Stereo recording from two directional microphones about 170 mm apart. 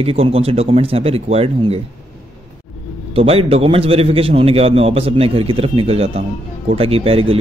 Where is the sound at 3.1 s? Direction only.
35° right (ahead or behind).